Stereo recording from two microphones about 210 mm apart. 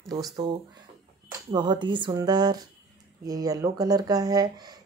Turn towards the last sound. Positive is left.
turn(degrees=-20)  # may be behind; listen again after turning